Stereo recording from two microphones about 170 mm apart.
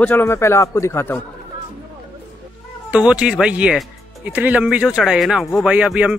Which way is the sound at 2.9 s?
5° right (ahead or behind).